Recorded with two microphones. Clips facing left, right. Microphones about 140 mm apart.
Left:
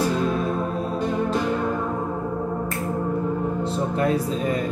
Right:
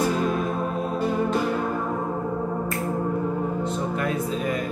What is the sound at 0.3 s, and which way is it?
Music, 5° right (ahead or behind).